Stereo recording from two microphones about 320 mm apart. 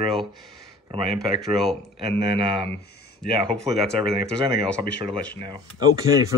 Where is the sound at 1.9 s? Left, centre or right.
Centre.